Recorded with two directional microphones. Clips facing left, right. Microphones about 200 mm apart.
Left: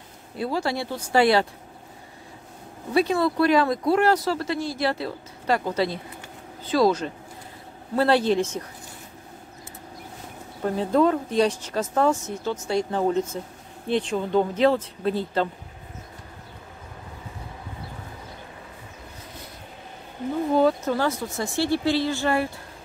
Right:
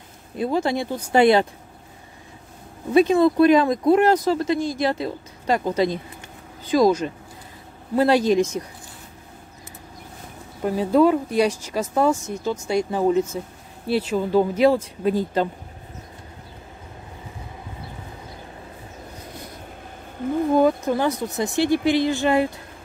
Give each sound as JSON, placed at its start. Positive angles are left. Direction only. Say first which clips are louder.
{"t": 0.4, "sound": "speech", "louder": "right 4 dB", "side_deg": -20}
{"t": 2.9, "sound": "speech", "louder": "right 6 dB", "side_deg": -20}
{"t": 10.6, "sound": "speech", "louder": "right 3 dB", "side_deg": -10}
{"t": 20.2, "sound": "a sound", "louder": "right 3 dB", "side_deg": -55}
{"t": 20.5, "sound": "speech", "louder": "right 1 dB", "side_deg": -15}